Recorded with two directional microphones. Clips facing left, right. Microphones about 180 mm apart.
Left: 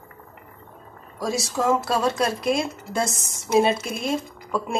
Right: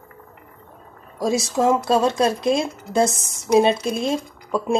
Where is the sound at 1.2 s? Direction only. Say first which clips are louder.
Right 5 dB; 20° right (ahead or behind).